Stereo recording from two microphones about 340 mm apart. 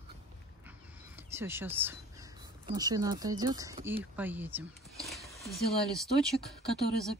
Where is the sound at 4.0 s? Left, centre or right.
Centre.